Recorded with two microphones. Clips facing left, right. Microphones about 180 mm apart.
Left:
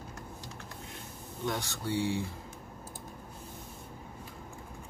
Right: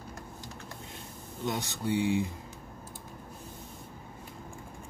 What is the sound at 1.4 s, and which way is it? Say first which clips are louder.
Speech: right 2 dB; 20° right (ahead or behind).